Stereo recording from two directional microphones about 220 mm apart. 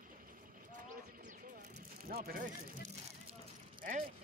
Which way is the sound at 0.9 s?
35° right (ahead or behind).